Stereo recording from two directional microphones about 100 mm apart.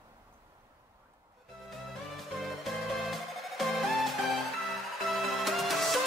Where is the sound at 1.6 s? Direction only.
Centre (ahead or behind).